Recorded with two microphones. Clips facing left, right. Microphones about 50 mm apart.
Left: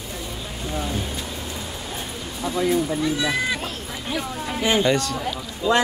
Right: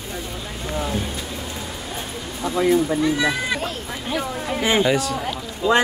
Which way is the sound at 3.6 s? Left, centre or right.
Centre.